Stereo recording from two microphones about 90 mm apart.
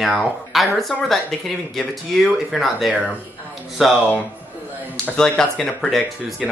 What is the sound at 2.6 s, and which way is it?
Speech, centre (ahead or behind).